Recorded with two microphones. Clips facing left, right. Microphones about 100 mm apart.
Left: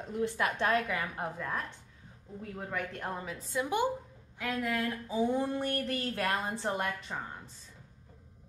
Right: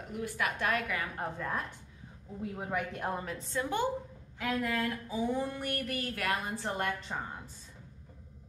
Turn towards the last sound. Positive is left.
turn(degrees=-5)  # may be behind; listen again after turning